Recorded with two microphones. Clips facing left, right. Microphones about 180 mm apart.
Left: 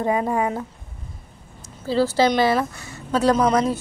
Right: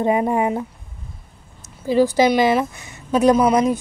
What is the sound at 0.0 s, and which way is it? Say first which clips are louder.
Speech: right 3 dB; 20° right (ahead or behind).